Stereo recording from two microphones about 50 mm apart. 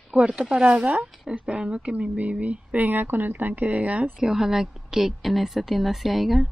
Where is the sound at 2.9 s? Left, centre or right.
Right.